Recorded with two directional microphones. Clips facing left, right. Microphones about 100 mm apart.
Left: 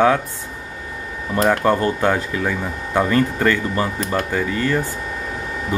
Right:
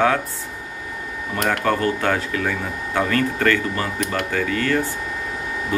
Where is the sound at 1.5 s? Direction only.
20° left (ahead or behind).